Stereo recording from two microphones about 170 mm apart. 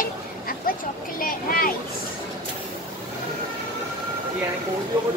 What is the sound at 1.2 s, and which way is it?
Speech, 60° left (ahead or behind).